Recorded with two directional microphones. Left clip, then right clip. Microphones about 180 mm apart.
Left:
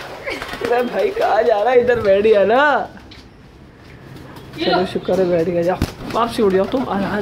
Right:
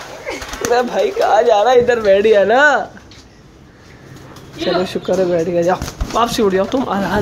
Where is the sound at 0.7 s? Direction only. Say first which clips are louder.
Right 3 dB; 10° right (ahead or behind).